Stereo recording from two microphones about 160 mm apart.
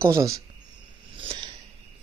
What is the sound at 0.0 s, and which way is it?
Speech, 20° right (ahead or behind).